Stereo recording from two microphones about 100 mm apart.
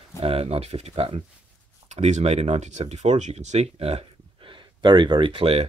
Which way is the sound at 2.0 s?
90° right.